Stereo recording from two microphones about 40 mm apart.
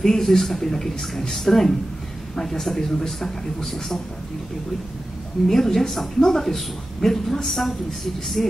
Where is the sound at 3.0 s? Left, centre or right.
Centre.